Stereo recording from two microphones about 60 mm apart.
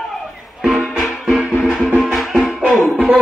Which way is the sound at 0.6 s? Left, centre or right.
Centre.